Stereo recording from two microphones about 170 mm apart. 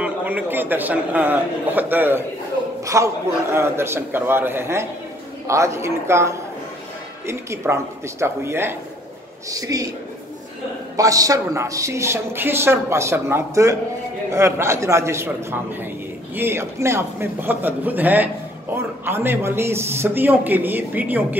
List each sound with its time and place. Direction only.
0.0 s a woman's voice: 10° right (ahead or behind)
11.0 s a woman's voice: 20° right (ahead or behind)